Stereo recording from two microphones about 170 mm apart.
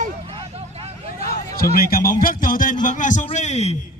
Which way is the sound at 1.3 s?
60° left (ahead or behind).